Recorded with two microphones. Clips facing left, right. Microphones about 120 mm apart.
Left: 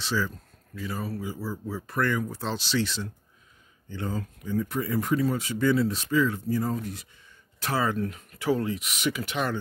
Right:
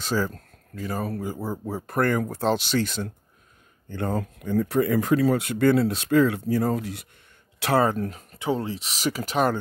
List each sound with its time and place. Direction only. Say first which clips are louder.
0.0 s speech: right 3 dB; 45° right (ahead or behind); by 7.1 s 75° right (ahead or behind)
7.8 s speech: right 4 dB; 40° right (ahead or behind)